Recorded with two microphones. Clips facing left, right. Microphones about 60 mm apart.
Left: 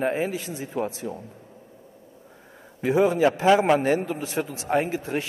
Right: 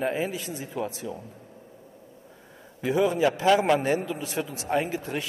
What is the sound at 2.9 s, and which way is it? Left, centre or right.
Speech, left.